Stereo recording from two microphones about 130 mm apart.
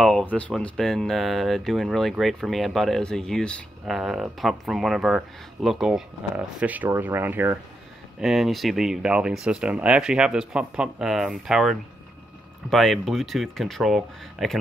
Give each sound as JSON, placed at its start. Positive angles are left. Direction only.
{"t": 0.0, "sound": "speech", "side_deg": 5}
{"t": 8.2, "sound": "speech", "side_deg": 0}